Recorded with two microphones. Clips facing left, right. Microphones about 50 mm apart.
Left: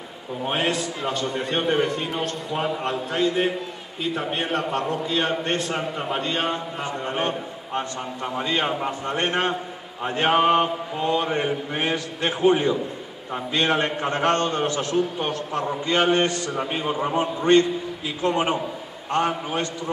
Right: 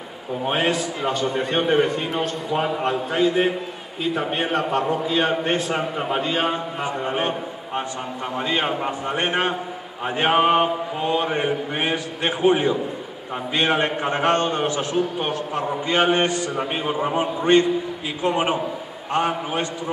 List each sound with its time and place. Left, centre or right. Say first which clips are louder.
0.5 s a man's voice: right 2 dB; centre
8.4 s mantra: right 1 dB; centre